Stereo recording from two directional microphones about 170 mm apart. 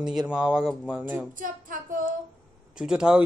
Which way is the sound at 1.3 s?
55° right (ahead or behind).